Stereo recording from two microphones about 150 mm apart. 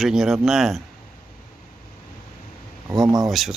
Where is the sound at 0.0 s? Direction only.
Centre (ahead or behind).